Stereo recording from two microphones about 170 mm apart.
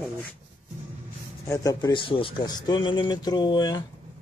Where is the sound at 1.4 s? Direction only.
20° left (ahead or behind).